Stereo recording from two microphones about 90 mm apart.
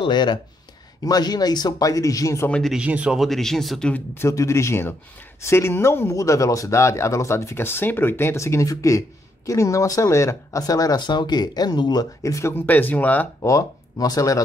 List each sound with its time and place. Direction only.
0.0 s speech: 55° left (ahead or behind); by 2.4 s 40° left (ahead or behind)
2.7 s speech: 15° right (ahead or behind)
3.2 s speech: 5° left (ahead or behind)
4.1 s speech: 30° left (ahead or behind)
12.6 s speech: 20° left (ahead or behind)
13.4 s speech: 35° left (ahead or behind)